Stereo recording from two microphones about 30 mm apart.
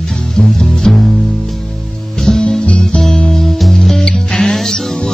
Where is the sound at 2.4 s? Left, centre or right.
Left.